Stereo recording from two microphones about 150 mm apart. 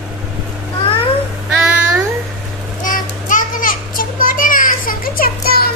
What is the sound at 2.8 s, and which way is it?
Children playing, 60° left (ahead or behind).